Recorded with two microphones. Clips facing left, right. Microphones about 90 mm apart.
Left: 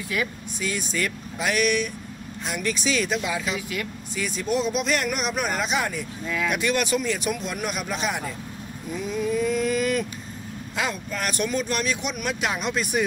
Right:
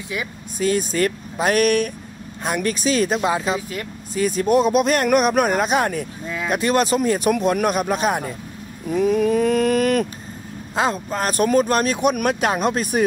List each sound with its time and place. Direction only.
0.6 s speech: 45° right (ahead or behind)
6.2 s speech: 25° right (ahead or behind)
6.5 s speech: 40° right (ahead or behind)
8.9 s mantra: 60° right (ahead or behind)
10.8 s speech: 35° right (ahead or behind)